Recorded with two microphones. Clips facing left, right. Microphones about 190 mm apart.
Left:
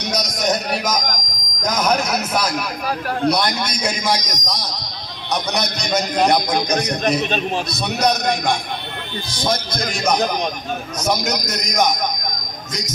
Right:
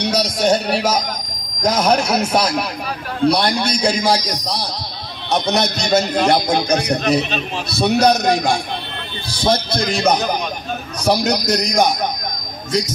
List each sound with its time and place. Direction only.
0.0 s a man's voice: 30° right (ahead or behind)